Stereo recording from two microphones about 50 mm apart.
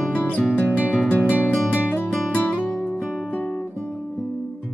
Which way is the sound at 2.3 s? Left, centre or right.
Left.